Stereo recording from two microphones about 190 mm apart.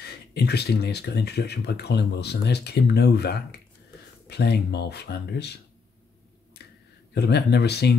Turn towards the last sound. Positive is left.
turn(degrees=60)  # may be behind; listen again after turning